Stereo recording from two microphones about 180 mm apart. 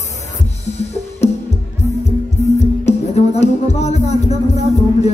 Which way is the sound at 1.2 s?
40° left (ahead or behind).